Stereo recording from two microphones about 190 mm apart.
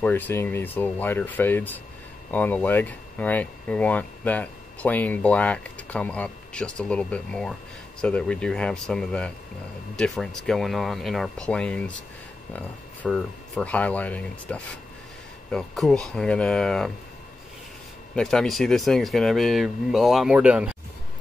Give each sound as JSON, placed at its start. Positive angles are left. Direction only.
{"t": 0.0, "sound": "speech", "side_deg": 10}
{"t": 18.1, "sound": "speech", "side_deg": 5}